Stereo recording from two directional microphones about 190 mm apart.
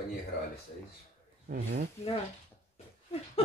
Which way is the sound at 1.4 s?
45° right (ahead or behind).